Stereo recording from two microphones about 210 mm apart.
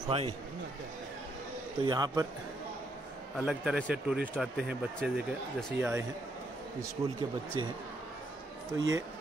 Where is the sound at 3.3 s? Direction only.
5° right (ahead or behind).